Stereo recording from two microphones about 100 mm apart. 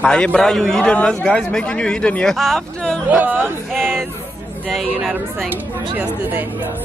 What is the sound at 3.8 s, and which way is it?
Speech, 5° left (ahead or behind).